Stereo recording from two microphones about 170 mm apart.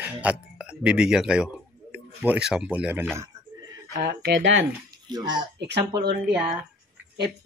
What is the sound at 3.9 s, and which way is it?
Speech, 80° right.